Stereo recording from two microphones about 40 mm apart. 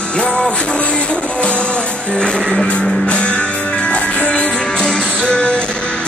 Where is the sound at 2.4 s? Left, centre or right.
Centre.